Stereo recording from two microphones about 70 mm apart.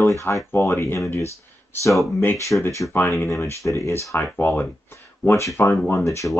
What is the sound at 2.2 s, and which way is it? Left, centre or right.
Speech, left.